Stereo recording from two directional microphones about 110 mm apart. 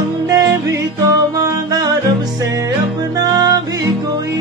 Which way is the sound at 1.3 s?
35° right (ahead or behind).